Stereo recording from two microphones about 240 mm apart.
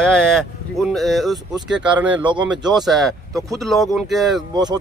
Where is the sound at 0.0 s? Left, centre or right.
Centre.